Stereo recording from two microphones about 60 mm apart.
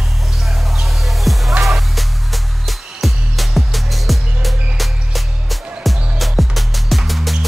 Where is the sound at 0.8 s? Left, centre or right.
Centre.